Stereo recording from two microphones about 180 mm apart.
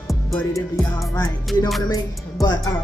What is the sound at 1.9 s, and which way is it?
Music, 20° left (ahead or behind).